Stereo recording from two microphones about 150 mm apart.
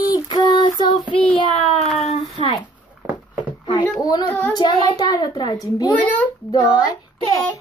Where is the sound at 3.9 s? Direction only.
25° left (ahead or behind).